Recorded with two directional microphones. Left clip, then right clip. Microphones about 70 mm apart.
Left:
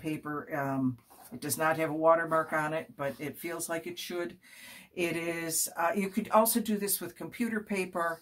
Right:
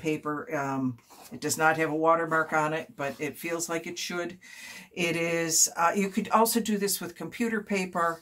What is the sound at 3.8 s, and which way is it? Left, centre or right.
Speech, right.